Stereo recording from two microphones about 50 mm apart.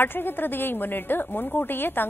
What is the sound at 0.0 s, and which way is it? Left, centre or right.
A woman's voice, left.